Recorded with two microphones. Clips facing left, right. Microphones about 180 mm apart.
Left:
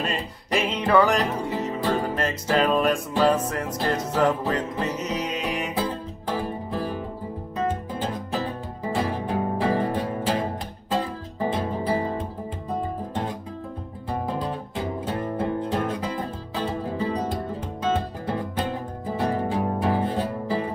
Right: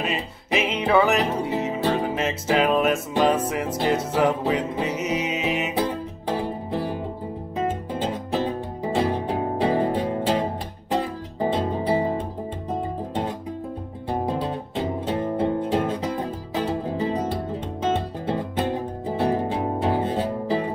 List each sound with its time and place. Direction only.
0.0 s music: 5° right (ahead or behind)
6.3 s music: 20° right (ahead or behind)
8.9 s music: 20° right (ahead or behind)
14.0 s music: 25° right (ahead or behind)
19.0 s music: 20° right (ahead or behind)